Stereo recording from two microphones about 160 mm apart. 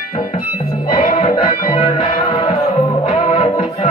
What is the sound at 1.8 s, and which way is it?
Music, 35° left (ahead or behind).